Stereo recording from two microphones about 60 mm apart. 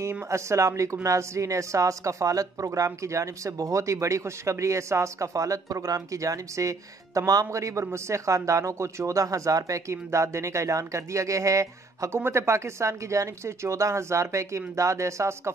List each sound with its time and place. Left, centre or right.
0.3 s speech: right
12.1 s speech: right